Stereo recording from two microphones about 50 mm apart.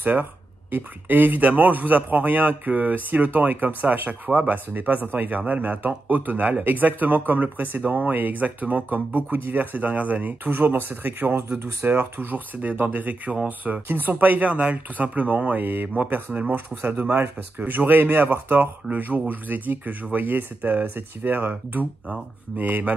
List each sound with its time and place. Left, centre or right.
0.0 s speech: right
16.0 s speech: right